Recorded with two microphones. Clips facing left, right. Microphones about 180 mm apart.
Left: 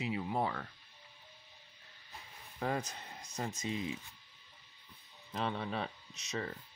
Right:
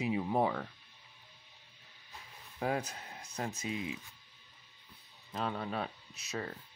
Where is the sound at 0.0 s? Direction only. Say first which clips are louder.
Right 4 dB; 15° right (ahead or behind).